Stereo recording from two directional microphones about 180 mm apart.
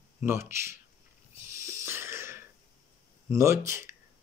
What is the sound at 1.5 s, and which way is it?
Wheeze, 15° right (ahead or behind).